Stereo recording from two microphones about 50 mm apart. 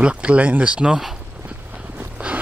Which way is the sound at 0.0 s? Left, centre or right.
Right.